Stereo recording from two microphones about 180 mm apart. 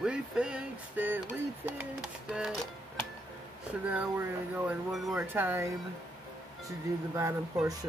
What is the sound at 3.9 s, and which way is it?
Speech, 5° right (ahead or behind).